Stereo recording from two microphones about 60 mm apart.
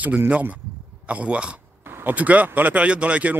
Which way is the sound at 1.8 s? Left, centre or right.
Right.